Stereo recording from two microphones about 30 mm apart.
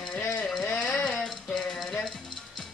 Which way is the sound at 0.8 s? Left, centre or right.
Left.